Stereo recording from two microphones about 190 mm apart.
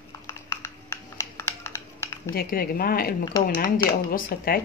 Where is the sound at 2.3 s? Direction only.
50° left (ahead or behind).